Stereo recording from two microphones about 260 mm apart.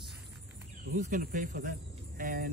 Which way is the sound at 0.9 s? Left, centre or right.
Right.